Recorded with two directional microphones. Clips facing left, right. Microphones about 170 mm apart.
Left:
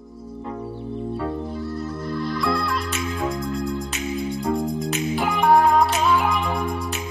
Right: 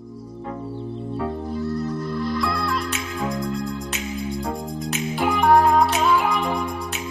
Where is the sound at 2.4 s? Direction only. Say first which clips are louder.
Left 1 dB; centre (ahead or behind).